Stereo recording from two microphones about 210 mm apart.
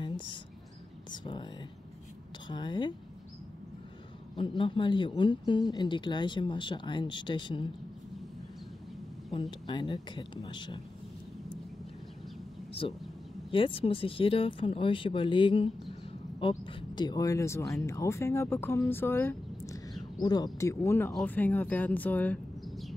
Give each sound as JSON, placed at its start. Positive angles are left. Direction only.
{"t": 1.1, "sound": "speech", "side_deg": 20}
{"t": 4.4, "sound": "speech", "side_deg": 25}
{"t": 9.3, "sound": "speech", "side_deg": 20}
{"t": 13.5, "sound": "speech", "side_deg": 25}